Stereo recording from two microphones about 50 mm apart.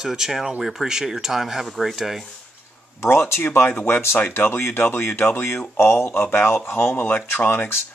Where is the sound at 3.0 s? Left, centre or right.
Left.